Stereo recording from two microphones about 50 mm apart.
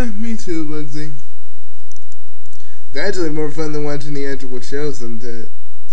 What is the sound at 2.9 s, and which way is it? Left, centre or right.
Speech, centre.